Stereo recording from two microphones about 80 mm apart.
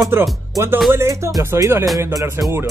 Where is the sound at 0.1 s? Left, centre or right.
Right.